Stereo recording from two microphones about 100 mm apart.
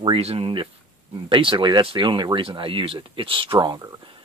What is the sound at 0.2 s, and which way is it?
Speech, 90° right.